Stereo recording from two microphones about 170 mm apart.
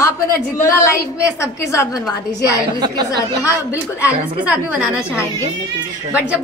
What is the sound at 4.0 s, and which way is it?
A woman's voice, 10° right (ahead or behind).